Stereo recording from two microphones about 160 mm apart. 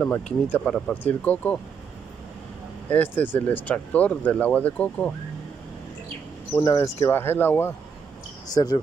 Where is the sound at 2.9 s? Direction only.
10° left (ahead or behind).